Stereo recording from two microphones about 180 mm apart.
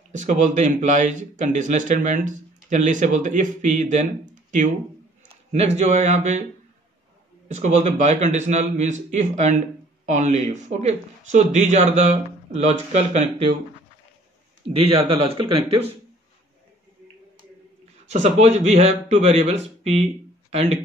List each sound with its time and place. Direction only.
0.1 s speech: 45° right (ahead or behind)
7.5 s speech: 40° right (ahead or behind)
14.7 s speech: 35° right (ahead or behind)
18.0 s a man's voice: 40° right (ahead or behind)